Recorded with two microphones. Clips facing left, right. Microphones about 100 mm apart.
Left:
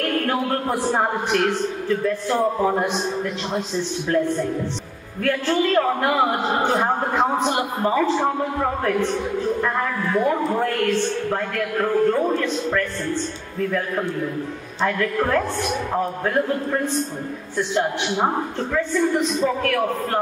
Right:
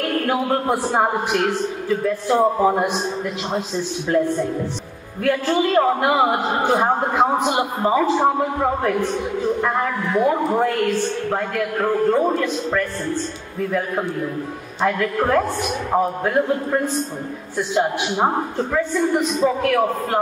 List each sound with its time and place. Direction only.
0.3 s a man's voice: 10° right (ahead or behind)
5.2 s a man's voice: 15° right (ahead or behind)
9.6 s a man's voice: 20° right (ahead or behind)
15.0 s a man's voice: 20° right (ahead or behind)